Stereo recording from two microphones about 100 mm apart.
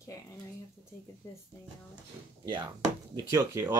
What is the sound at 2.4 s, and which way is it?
Speech, 50° right (ahead or behind).